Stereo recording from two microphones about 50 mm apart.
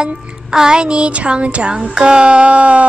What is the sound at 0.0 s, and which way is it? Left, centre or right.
Music, centre.